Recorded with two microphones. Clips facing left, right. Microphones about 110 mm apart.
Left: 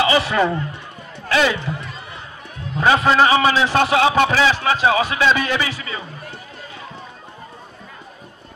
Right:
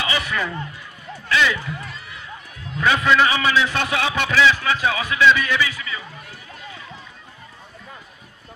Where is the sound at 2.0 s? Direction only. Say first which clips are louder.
Left 3 dB; 35° left (ahead or behind).